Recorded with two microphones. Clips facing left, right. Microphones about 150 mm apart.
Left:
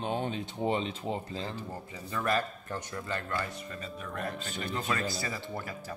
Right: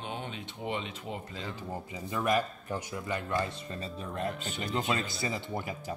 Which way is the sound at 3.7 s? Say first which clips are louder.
Right 3 dB; 30° right (ahead or behind).